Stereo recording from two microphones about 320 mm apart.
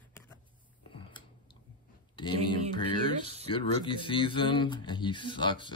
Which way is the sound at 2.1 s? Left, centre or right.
Centre.